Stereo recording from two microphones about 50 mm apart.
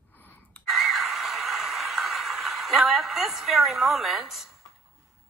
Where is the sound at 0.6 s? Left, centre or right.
Centre.